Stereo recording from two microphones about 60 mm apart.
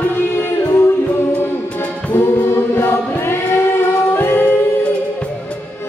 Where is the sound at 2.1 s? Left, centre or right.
Left.